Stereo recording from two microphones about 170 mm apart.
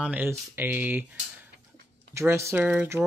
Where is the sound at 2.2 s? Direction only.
15° right (ahead or behind).